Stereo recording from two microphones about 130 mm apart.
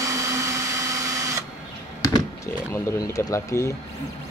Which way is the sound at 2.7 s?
25° left (ahead or behind).